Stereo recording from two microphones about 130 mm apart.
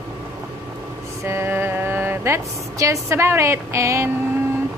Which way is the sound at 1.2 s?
20° right (ahead or behind).